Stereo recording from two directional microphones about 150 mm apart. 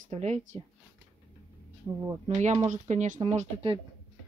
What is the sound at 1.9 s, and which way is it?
Speech, 30° right (ahead or behind).